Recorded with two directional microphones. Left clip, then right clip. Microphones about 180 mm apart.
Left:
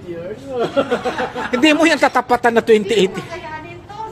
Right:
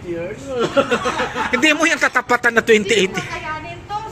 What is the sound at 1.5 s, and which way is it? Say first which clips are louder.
A man's voice: left 2 dB; 15° left (ahead or behind).